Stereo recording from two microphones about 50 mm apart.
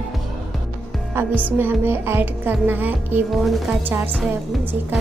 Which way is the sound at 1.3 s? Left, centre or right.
Right.